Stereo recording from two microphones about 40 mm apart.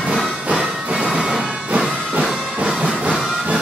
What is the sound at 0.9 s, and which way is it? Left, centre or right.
Music, centre.